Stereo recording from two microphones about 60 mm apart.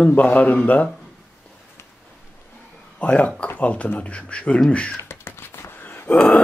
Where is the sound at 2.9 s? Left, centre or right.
Centre.